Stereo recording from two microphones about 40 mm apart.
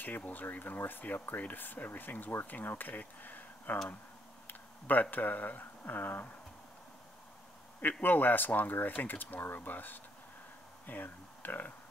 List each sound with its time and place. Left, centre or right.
0.3 s speech: left
4.5 s tick-tock: left
5.1 s speech: left
8.0 s speech: left